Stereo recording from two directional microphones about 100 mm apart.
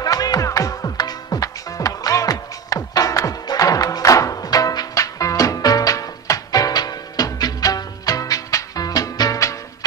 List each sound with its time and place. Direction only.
0.0 s music: 40° left (ahead or behind)